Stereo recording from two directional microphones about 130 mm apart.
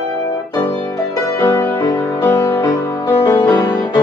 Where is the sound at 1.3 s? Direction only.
20° left (ahead or behind).